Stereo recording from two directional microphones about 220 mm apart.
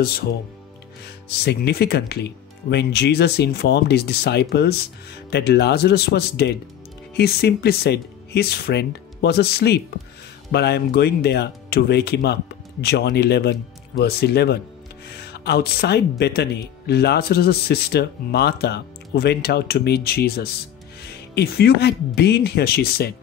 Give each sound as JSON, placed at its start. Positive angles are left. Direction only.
{"t": 1.0, "sound": "speech", "side_deg": 45}